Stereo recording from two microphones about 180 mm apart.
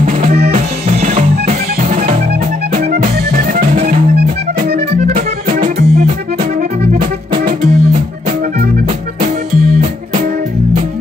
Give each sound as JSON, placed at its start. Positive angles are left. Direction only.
{"t": 0.0, "sound": "drum", "side_deg": -45}
{"t": 0.5, "sound": "music", "side_deg": -40}
{"t": 2.8, "sound": "music", "side_deg": -65}
{"t": 5.0, "sound": "music", "side_deg": -50}